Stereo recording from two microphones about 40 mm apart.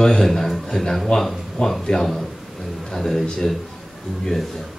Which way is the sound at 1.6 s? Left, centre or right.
Left.